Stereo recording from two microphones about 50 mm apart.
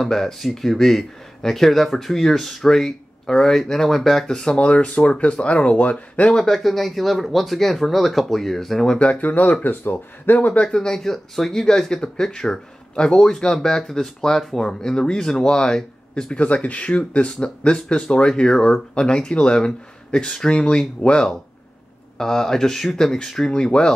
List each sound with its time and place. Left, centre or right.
0.0 s speech: centre
4.6 s speech: left
6.2 s speech: centre
8.9 s speech: left
9.7 s speech: left
10.5 s speech: centre
16.3 s speech: left